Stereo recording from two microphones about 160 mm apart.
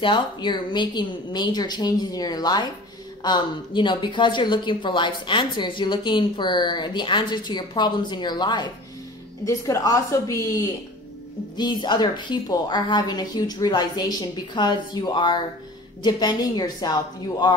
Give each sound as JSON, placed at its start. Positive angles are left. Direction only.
{"t": 0.0, "sound": "speech", "side_deg": 30}